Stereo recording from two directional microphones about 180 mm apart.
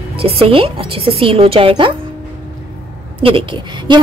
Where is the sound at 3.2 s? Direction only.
30° right (ahead or behind).